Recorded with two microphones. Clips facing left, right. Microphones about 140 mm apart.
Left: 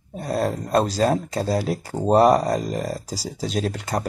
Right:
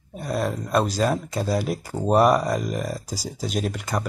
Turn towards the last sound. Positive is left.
turn(degrees=35)  # may be behind; listen again after turning